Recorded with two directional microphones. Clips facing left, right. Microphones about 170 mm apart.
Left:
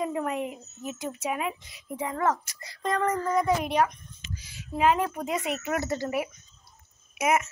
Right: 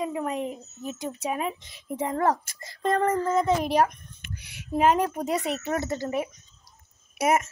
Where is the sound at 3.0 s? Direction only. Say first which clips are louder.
Right 1 dB; 25° right (ahead or behind).